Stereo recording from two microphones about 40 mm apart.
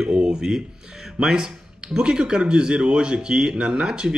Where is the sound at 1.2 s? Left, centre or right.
Centre.